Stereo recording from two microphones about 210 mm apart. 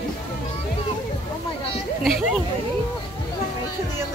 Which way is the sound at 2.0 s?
Centre (ahead or behind).